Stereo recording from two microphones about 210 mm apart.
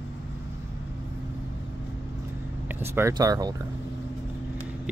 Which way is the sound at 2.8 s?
10° right (ahead or behind).